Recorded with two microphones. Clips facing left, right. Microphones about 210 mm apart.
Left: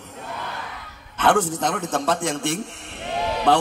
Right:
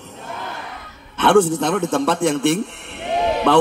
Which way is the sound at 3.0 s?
60° right (ahead or behind).